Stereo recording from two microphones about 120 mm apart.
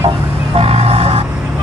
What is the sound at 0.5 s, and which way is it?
Vehicle, 60° right (ahead or behind).